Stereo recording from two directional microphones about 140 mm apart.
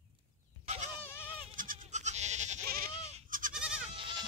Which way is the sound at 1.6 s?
65° right (ahead or behind).